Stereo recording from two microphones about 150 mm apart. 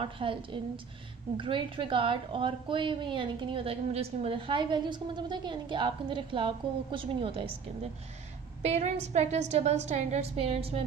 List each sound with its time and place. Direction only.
0.0 s a woman's voice: 35° right (ahead or behind)
8.6 s a woman's voice: 45° right (ahead or behind)